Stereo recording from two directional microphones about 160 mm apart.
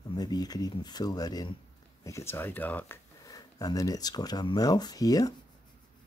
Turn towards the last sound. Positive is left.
turn(degrees=20)  # may be behind; listen again after turning